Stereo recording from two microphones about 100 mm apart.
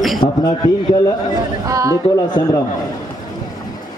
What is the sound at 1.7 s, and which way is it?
Speech, 35° right (ahead or behind).